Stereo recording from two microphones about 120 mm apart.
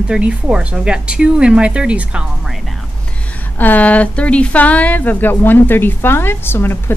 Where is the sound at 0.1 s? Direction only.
10° right (ahead or behind).